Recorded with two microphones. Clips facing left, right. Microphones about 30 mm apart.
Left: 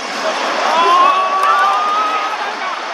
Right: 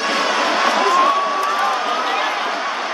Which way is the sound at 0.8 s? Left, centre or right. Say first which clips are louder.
Left 7 dB; left.